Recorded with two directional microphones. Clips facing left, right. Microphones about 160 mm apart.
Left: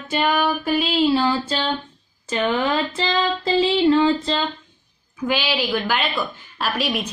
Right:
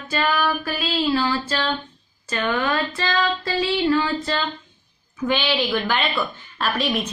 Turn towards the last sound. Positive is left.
turn(degrees=10)  # may be behind; listen again after turning